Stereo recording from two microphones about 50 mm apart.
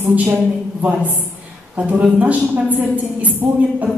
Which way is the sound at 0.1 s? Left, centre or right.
Right.